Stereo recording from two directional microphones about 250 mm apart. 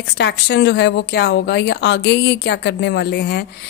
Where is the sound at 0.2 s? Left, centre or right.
Left.